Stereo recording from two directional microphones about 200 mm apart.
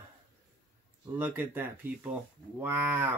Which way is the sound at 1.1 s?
10° right (ahead or behind).